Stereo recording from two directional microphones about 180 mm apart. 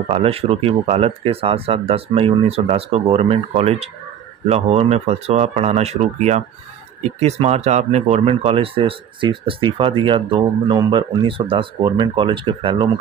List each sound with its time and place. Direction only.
0.1 s speech: 35° right (ahead or behind)